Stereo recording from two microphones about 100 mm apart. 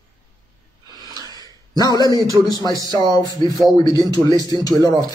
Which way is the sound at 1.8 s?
40° left (ahead or behind).